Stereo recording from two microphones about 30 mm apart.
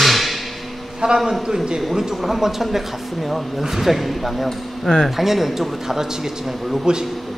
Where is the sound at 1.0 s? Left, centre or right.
Right.